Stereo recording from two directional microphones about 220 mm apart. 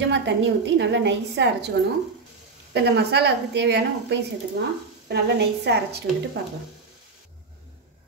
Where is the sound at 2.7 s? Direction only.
50° right (ahead or behind).